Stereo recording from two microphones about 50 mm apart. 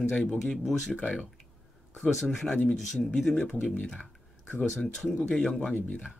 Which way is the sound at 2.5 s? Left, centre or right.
Left.